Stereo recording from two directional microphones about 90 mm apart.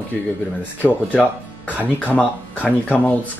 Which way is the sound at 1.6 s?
15° left (ahead or behind).